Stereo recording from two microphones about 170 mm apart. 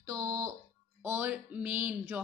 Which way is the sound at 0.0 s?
20° right (ahead or behind).